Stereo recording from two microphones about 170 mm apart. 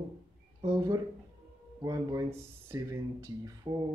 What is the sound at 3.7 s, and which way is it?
Speech, 25° right (ahead or behind).